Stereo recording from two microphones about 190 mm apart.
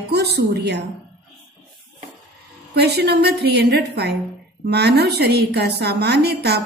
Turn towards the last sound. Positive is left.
turn(degrees=-60)  # may be behind; listen again after turning